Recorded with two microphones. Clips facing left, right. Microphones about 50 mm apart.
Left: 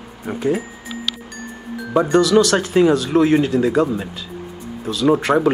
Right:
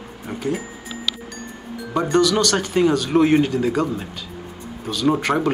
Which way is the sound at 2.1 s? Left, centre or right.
Centre.